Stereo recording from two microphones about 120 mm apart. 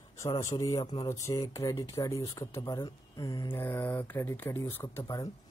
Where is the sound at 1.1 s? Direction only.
25° left (ahead or behind).